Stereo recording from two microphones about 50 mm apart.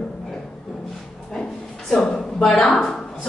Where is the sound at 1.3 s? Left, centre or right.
Centre.